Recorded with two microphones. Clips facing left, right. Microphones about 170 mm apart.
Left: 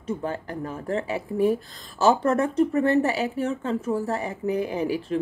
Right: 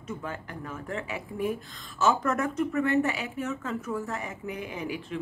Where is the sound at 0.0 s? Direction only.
35° left (ahead or behind).